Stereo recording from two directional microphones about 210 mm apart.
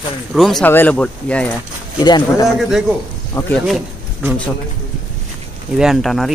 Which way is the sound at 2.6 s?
Centre (ahead or behind).